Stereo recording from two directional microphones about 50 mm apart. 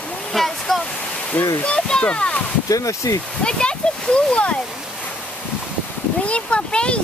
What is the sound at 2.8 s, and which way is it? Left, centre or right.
Speech, left.